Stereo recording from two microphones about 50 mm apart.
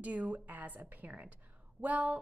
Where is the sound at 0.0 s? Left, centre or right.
Right.